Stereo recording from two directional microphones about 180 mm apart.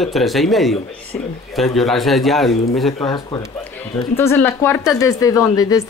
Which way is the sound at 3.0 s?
20° left (ahead or behind).